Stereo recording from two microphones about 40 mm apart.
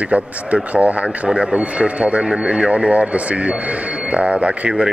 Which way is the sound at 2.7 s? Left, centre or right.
Right.